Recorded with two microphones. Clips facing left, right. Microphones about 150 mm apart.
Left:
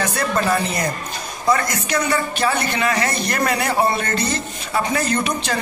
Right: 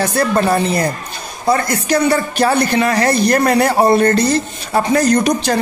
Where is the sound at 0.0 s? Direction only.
35° right (ahead or behind).